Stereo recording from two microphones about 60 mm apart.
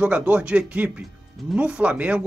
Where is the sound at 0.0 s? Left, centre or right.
Right.